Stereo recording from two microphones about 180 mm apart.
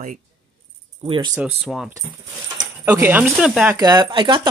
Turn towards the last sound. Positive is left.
turn(degrees=-25)  # may be behind; listen again after turning